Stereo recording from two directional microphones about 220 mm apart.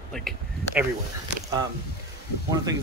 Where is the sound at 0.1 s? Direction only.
Centre (ahead or behind).